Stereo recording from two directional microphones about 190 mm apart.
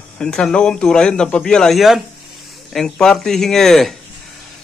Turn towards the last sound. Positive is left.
turn(degrees=0)  # may be behind; listen again after turning